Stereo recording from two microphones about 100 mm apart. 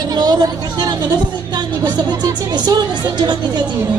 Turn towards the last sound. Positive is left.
turn(degrees=-45)  # may be behind; listen again after turning